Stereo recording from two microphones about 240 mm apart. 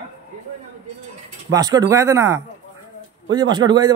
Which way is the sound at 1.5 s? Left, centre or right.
Centre.